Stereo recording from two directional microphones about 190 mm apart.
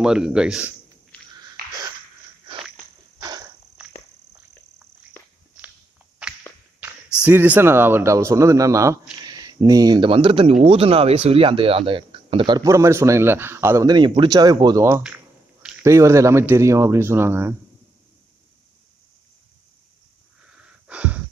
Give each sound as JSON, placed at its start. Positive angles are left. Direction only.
{"t": 0.0, "sound": "a man's voice", "side_deg": -5}
{"t": 3.2, "sound": "a sound", "side_deg": -20}
{"t": 5.6, "sound": "walk", "side_deg": -5}
{"t": 7.2, "sound": "speech", "side_deg": -10}
{"t": 20.5, "sound": "wheeze", "side_deg": -5}